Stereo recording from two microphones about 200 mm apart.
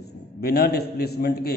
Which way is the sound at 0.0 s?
55° left (ahead or behind).